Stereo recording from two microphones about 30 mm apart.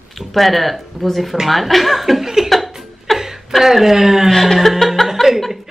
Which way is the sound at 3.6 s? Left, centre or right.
Centre.